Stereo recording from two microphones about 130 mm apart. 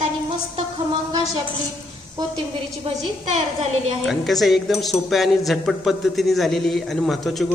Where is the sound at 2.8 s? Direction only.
55° right (ahead or behind).